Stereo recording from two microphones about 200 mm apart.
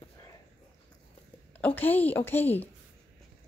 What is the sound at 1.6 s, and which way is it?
Speech, 10° left (ahead or behind).